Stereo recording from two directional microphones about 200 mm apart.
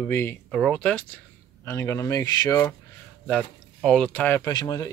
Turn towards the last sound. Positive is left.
turn(degrees=20)  # may be behind; listen again after turning